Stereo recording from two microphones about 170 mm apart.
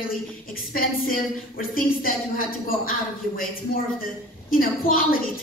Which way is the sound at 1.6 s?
55° left (ahead or behind).